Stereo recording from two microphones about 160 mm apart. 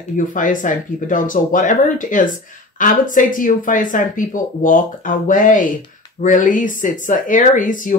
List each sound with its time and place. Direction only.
0.3 s speech: 55° left (ahead or behind)